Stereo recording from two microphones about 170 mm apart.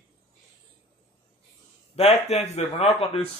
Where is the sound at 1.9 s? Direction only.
35° left (ahead or behind).